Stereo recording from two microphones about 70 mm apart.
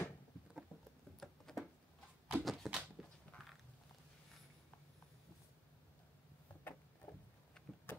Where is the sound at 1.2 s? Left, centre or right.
Centre.